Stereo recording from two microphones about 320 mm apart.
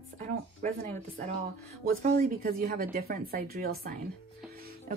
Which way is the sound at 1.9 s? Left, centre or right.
Right.